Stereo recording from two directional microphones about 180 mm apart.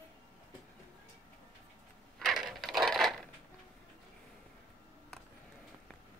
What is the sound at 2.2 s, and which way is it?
Coin, centre (ahead or behind).